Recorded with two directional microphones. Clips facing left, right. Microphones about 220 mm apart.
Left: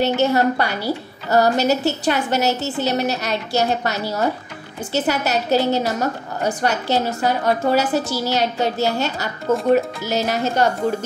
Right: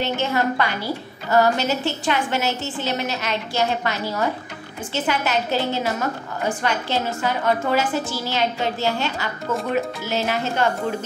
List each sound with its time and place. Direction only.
0.0 s a woman's voice: 40° left (ahead or behind)